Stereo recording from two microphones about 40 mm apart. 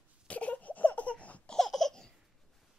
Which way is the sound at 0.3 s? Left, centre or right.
Left.